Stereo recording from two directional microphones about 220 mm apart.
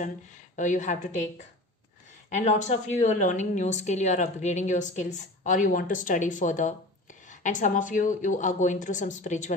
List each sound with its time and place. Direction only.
0.6 s a woman's voice: 35° left (ahead or behind)
2.3 s a woman's voice: 35° left (ahead or behind)